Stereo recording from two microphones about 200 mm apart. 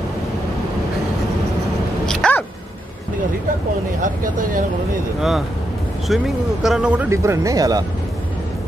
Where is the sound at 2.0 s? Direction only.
5° left (ahead or behind).